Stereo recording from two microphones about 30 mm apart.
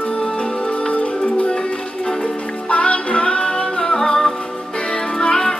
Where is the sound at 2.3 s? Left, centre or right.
Left; by 4.4 s centre.